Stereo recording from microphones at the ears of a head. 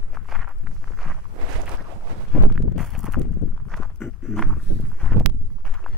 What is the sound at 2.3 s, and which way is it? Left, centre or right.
Walk, left.